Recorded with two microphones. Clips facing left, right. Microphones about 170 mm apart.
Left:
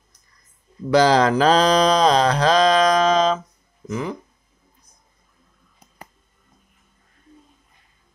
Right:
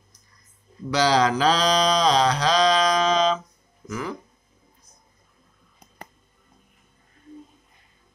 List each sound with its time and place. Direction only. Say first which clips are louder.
0.8 s speech: left 5 dB; 50° left (ahead or behind)
3.8 s speech: left 4 dB; 20° left (ahead or behind)